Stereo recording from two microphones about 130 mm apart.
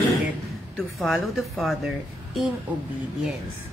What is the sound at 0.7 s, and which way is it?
A woman's voice, centre (ahead or behind).